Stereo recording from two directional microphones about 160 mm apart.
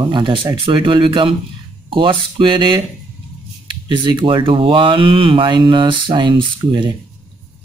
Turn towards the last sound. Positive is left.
turn(degrees=-30)  # may be behind; listen again after turning